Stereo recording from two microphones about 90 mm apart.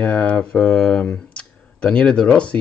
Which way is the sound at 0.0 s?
15° left (ahead or behind).